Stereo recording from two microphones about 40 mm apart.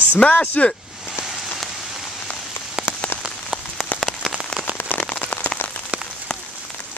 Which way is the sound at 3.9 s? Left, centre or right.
Centre.